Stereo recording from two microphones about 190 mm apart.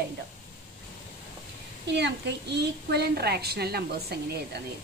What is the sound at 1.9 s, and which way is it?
A child's voice, 65° right (ahead or behind).